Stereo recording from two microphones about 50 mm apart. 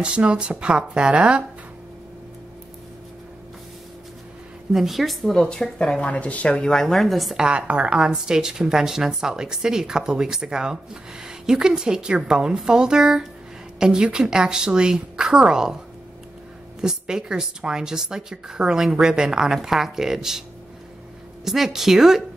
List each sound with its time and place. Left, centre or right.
0.0 s speech: right
4.7 s a woman's voice: centre
5.3 s speech: centre; by 6.5 s left
6.5 s a woman's voice: centre
7.3 s a woman's voice: right
16.8 s a woman's voice: centre
21.5 s a woman's voice: centre